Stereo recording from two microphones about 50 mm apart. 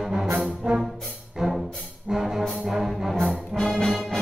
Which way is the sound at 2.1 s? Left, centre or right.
Centre.